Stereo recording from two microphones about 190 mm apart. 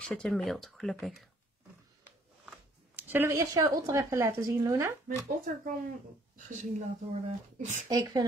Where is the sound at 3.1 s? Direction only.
15° right (ahead or behind).